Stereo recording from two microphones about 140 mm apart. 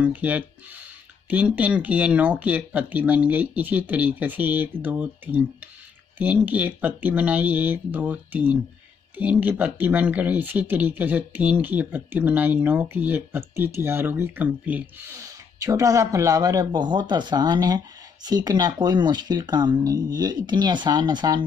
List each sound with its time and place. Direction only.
0.0 s speech: 10° right (ahead or behind); by 21.5 s 30° right (ahead or behind)